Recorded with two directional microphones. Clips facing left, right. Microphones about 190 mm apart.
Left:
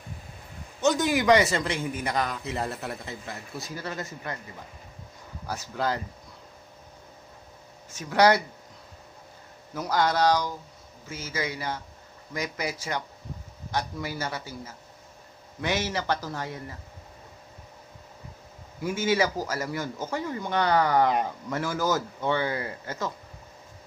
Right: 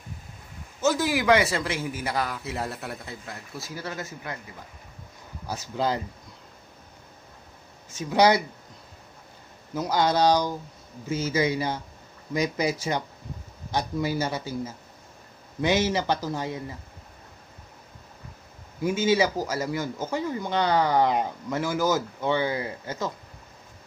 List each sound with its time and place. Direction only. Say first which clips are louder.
0.7 s a man's voice: even; 5° right (ahead or behind)
5.5 s speech: right 2 dB; 20° right (ahead or behind)
8.0 s speech: right 1 dB; 15° right (ahead or behind)
9.8 s speech: right 2 dB; 20° right (ahead or behind)
15.6 s speech: right 5 dB; 20° right (ahead or behind)
18.8 s speech: right 3 dB; 20° right (ahead or behind)